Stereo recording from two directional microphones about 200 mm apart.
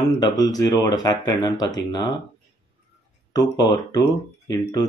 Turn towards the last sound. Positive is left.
turn(degrees=20)  # may be behind; listen again after turning